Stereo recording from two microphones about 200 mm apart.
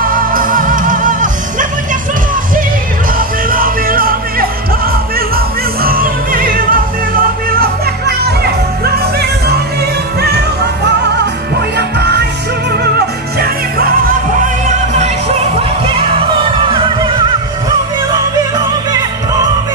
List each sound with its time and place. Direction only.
0.1 s music: 45° right (ahead or behind)
3.2 s music: 45° right (ahead or behind)
11.7 s music: 55° right (ahead or behind)
16.7 s music: 25° right (ahead or behind)